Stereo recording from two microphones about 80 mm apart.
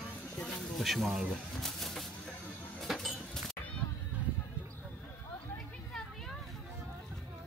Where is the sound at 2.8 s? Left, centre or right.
Centre.